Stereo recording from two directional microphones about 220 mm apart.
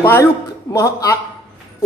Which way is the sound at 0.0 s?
10° left (ahead or behind).